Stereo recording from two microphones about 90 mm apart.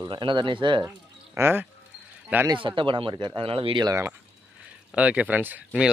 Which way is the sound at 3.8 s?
35° right (ahead or behind).